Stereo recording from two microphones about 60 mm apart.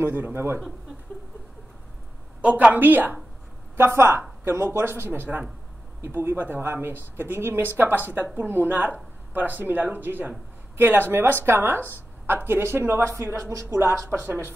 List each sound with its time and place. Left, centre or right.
0.0 s speech: right
2.4 s speech: right
14.2 s speech: right